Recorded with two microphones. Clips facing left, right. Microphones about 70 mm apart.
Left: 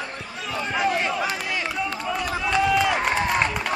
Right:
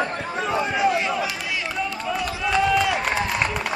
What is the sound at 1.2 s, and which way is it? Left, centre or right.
Run, left.